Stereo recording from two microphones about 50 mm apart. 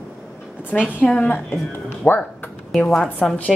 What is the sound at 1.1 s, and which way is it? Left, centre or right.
A woman's voice, left.